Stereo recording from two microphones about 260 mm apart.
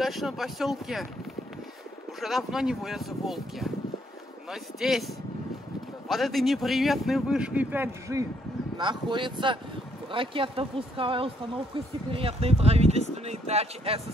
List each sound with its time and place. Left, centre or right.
0.0 s a man's voice: centre
2.1 s a man's voice: centre; by 14.0 s right